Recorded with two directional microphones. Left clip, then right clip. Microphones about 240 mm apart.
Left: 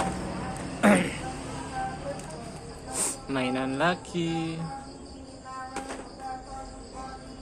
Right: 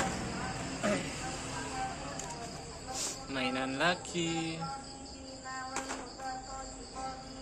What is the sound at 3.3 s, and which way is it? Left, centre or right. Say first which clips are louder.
Speech: left 5 dB; centre.